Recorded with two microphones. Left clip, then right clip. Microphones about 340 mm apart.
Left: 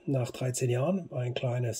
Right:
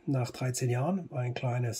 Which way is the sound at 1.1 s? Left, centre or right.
Centre.